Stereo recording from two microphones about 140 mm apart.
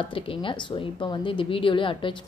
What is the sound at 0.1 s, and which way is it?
A woman's voice, 40° left (ahead or behind).